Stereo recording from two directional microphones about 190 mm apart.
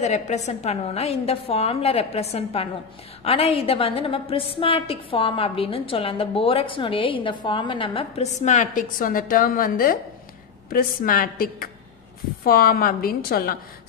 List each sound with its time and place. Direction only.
0.0 s a woman's voice: 35° left (ahead or behind); by 13.6 s 50° left (ahead or behind)